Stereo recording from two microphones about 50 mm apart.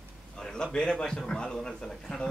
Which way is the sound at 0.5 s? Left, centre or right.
Centre.